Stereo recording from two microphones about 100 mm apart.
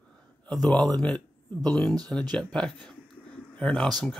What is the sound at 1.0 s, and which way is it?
Speech, 15° left (ahead or behind).